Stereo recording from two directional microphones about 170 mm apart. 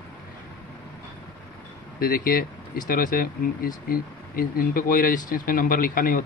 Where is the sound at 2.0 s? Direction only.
60° left (ahead or behind).